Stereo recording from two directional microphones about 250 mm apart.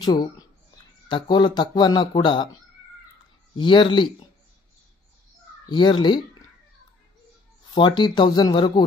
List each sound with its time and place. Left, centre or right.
0.0 s speech: centre
3.5 s speech: centre
5.7 s speech: centre
7.7 s speech: centre